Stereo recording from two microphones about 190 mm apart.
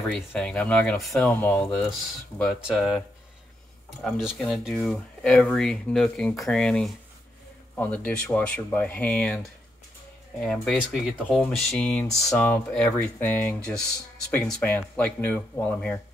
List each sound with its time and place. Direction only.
0.1 s speech: 5° left (ahead or behind)
4.0 s speech: centre (ahead or behind)